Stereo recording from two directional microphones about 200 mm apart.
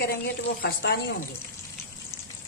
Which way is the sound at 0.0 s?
50° left (ahead or behind).